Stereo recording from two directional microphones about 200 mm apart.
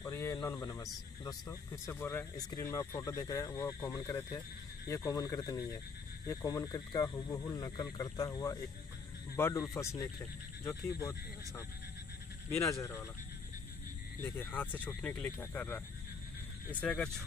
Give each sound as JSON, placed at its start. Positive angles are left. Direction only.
{"t": 0.0, "sound": "a sound", "side_deg": 15}
{"t": 1.2, "sound": "speech", "side_deg": 15}
{"t": 14.2, "sound": "speech", "side_deg": 10}
{"t": 16.8, "sound": "speech", "side_deg": 5}